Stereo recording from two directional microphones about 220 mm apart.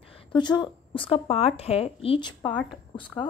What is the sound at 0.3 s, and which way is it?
Speech, 20° left (ahead or behind).